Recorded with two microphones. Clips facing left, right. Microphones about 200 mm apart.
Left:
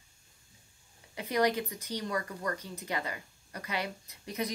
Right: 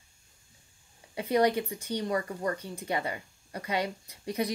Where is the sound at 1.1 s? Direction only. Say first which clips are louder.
Right 4 dB; 30° right (ahead or behind).